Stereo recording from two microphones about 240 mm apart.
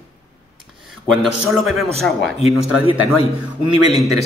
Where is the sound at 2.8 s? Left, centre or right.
Left.